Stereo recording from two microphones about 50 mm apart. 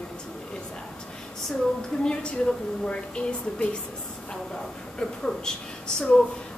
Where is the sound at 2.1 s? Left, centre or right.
Centre.